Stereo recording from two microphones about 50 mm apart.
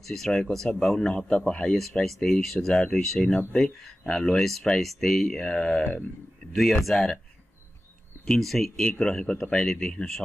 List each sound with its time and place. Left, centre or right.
0.0 s speech: centre
1.8 s speech: centre
6.5 s speech: centre
8.3 s speech: centre